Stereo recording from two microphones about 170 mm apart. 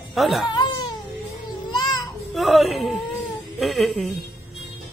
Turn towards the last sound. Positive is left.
turn(degrees=0)  # may be behind; listen again after turning